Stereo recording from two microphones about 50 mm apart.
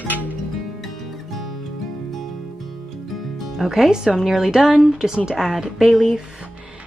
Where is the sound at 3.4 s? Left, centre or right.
Centre.